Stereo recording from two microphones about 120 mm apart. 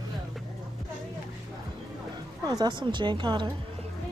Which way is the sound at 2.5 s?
35° right (ahead or behind).